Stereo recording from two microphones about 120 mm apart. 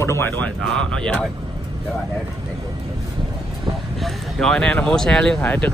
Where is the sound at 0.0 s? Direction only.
20° left (ahead or behind).